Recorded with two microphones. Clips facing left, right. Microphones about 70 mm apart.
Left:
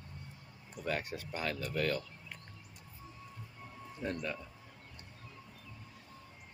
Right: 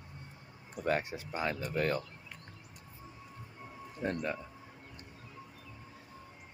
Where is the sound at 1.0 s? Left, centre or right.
Centre.